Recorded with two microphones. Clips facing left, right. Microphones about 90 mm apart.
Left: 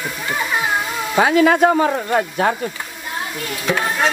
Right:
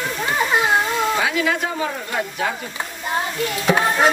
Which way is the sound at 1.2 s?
45° left (ahead or behind).